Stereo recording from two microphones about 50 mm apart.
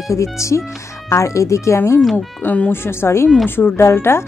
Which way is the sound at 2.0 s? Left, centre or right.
Centre.